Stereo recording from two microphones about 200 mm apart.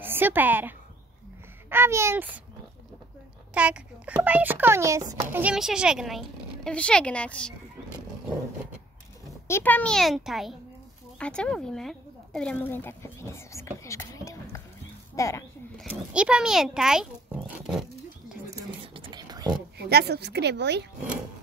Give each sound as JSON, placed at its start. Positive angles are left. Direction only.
{"t": 0.0, "sound": "a woman's voice", "side_deg": -10}
{"t": 3.5, "sound": "a child's voice", "side_deg": -5}
{"t": 9.5, "sound": "speech", "side_deg": 10}
{"t": 15.8, "sound": "speech", "side_deg": -5}
{"t": 18.6, "sound": "whispering", "side_deg": -25}
{"t": 19.8, "sound": "a woman's voice", "side_deg": -55}